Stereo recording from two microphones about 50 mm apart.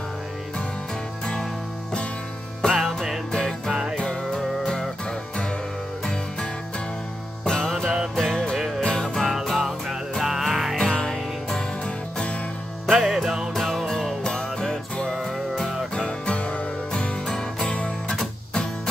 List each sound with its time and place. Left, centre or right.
1.2 s music: centre
2.6 s music: centre
3.3 s music: centre
7.4 s music: centre
8.5 s music: centre
8.8 s music: centre
9.2 s music: centre
10.8 s music: centre
13.0 s music: centre
15.9 s music: centre